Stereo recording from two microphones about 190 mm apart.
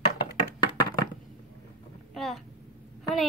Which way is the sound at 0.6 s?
20° left (ahead or behind).